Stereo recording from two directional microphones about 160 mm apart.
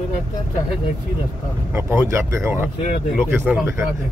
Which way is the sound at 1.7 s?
15° right (ahead or behind).